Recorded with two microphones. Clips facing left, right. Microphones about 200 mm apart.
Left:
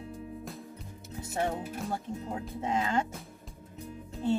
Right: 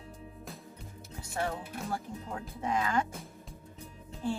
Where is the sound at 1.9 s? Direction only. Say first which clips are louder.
Even; 25° left (ahead or behind).